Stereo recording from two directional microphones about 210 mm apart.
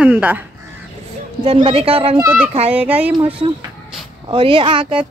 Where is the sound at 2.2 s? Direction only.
10° right (ahead or behind).